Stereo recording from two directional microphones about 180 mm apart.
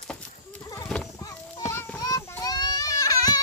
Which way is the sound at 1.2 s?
10° left (ahead or behind).